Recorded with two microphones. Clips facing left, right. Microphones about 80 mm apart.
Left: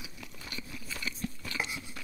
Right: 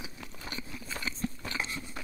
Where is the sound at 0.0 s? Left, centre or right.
Right.